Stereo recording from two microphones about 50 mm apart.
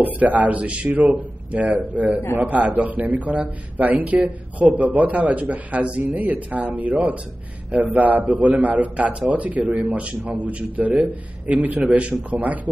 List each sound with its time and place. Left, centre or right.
0.0 s a man's voice: right